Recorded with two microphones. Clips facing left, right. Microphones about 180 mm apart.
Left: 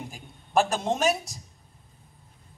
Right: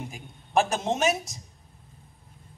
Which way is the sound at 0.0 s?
Centre (ahead or behind).